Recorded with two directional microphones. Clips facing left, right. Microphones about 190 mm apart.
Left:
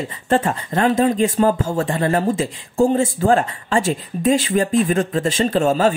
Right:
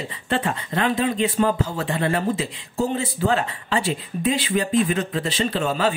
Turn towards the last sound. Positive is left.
turn(degrees=45)  # may be behind; listen again after turning